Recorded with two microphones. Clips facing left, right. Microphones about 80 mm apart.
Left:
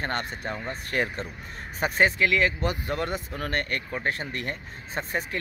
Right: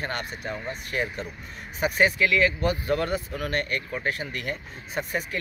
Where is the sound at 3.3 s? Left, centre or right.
Left.